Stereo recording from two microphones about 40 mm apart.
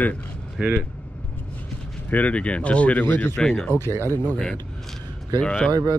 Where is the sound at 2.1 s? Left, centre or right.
Left.